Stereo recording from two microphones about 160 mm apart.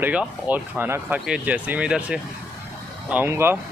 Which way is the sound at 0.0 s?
10° right (ahead or behind).